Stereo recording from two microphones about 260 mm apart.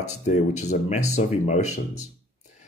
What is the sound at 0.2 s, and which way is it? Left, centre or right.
Speech, left.